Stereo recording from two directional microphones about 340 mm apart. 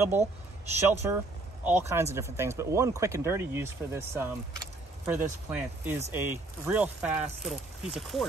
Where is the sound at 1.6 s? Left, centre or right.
Centre.